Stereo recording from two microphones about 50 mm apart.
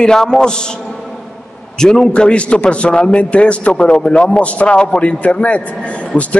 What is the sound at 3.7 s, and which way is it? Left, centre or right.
A man's voice, centre.